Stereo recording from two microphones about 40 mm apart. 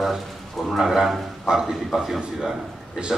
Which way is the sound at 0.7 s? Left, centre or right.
Centre.